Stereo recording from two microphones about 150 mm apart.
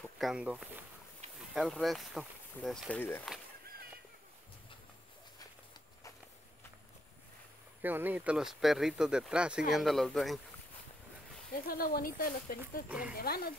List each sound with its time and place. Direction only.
0.0 s speech: centre (ahead or behind)
7.8 s speech: 10° right (ahead or behind)
11.6 s speech: 75° left (ahead or behind)
12.8 s speech: 10° right (ahead or behind)
13.1 s speech: 90° left